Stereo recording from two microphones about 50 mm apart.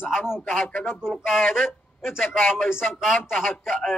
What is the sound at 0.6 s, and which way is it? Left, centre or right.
Speech, left.